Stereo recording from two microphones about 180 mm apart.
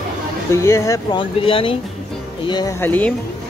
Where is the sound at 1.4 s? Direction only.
30° left (ahead or behind).